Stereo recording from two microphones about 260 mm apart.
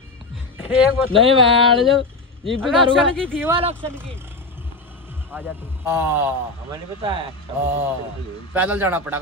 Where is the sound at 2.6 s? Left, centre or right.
Centre.